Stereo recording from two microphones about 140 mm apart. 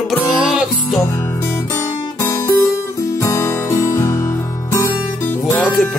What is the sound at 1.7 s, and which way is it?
Music, 20° left (ahead or behind).